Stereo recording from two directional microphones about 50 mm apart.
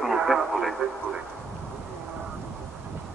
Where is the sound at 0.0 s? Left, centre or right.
Centre.